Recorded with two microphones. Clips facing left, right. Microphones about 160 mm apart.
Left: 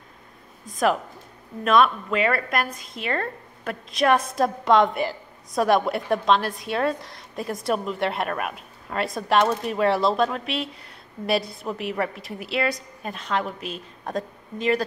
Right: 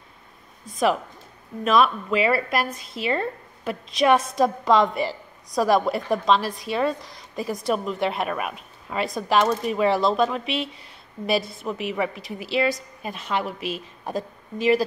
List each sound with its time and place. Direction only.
0.7 s a woman's voice: centre (ahead or behind)